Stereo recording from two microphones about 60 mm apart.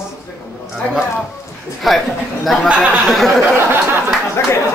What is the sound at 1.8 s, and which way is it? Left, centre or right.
Speech, centre.